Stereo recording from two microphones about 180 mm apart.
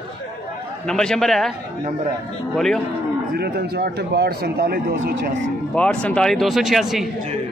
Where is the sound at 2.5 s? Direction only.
Centre (ahead or behind).